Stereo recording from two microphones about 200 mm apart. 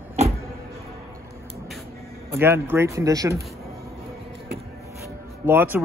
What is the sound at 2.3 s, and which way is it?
Speech, 10° right (ahead or behind).